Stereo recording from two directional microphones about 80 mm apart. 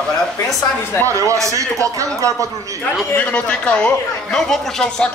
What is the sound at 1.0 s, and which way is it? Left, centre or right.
A man's voice, right.